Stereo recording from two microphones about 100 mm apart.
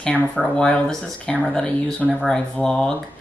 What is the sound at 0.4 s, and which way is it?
Speech, 10° left (ahead or behind).